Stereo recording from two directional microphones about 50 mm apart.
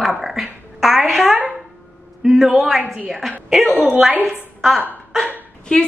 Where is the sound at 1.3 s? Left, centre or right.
Right.